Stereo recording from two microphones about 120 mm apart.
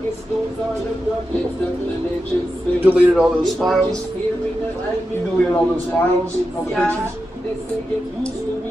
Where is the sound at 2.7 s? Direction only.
10° right (ahead or behind).